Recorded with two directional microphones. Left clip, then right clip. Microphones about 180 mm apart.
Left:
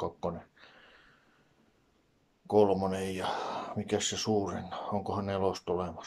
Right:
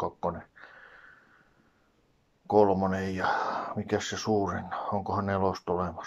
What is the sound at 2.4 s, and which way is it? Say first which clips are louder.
Speech: right 3 dB; 20° left (ahead or behind).